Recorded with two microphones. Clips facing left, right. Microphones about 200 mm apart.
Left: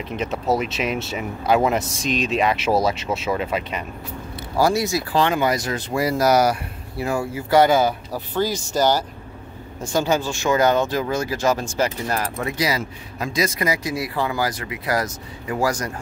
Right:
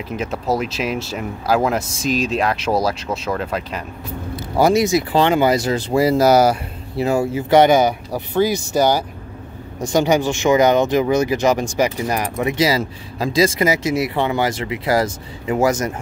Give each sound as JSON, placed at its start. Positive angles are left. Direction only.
{"t": 0.1, "sound": "speech", "side_deg": 0}
{"t": 4.6, "sound": "speech", "side_deg": -20}
{"t": 12.6, "sound": "speech", "side_deg": -30}